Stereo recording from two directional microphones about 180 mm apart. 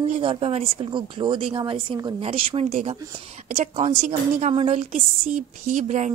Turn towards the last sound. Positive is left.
turn(degrees=-40)  # may be behind; listen again after turning